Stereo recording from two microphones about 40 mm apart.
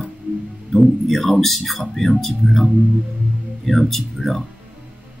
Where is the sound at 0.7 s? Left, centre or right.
Centre.